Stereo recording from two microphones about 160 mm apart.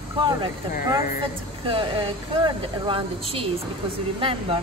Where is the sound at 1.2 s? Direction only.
30° right (ahead or behind).